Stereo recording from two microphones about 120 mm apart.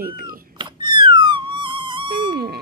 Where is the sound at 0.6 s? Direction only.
40° right (ahead or behind).